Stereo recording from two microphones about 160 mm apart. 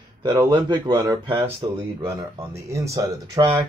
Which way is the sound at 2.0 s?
15° right (ahead or behind).